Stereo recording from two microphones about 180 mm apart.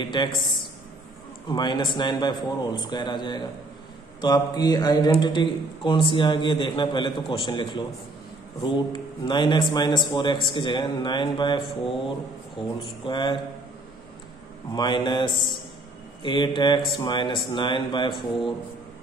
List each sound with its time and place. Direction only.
0.0 s a man's voice: 25° left (ahead or behind)
1.5 s a man's voice: 25° left (ahead or behind)
13.0 s a man's voice: 25° left (ahead or behind)
14.7 s a man's voice: 25° left (ahead or behind)